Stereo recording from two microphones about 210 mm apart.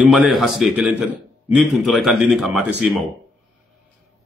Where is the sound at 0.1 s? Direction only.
Centre (ahead or behind).